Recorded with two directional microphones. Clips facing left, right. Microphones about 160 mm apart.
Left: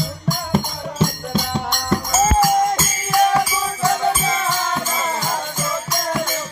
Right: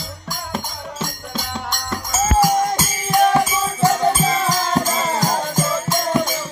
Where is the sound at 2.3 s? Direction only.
15° right (ahead or behind).